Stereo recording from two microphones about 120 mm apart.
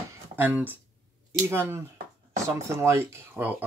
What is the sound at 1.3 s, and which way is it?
Speech, 20° right (ahead or behind).